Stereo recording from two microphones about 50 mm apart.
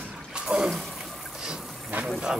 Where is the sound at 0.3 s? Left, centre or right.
Centre.